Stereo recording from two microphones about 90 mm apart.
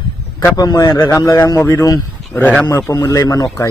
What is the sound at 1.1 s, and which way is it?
A man's voice, 35° left (ahead or behind).